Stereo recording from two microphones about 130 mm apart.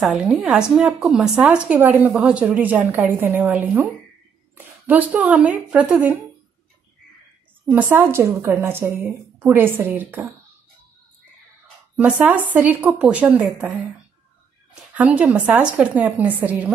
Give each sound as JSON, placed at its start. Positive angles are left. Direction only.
{"t": 0.0, "sound": "speech", "side_deg": -5}
{"t": 7.7, "sound": "a woman's voice", "side_deg": -15}
{"t": 12.0, "sound": "speech", "side_deg": -10}
{"t": 15.0, "sound": "speech", "side_deg": -10}